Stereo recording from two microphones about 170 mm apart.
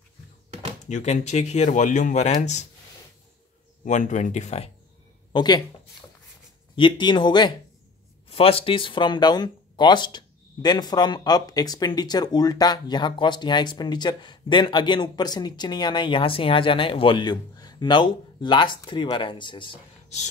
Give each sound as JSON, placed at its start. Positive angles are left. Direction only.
{"t": 0.8, "sound": "speech", "side_deg": 45}
{"t": 3.8, "sound": "speech", "side_deg": 45}
{"t": 5.3, "sound": "speech", "side_deg": 25}
{"t": 6.7, "sound": "speech", "side_deg": 30}